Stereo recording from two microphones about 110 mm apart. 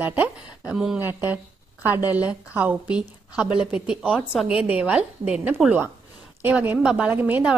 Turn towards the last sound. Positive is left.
turn(degrees=-15)  # may be behind; listen again after turning